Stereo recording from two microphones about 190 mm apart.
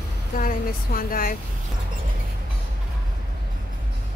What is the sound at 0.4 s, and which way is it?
Speech, 45° left (ahead or behind).